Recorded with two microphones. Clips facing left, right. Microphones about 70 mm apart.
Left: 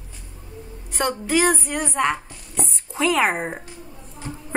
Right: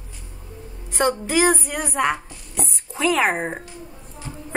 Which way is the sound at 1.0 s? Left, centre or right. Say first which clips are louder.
Right 2 dB; centre.